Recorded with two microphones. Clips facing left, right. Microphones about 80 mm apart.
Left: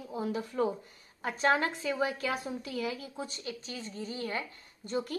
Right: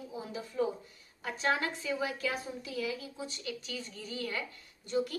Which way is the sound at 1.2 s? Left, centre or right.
Left.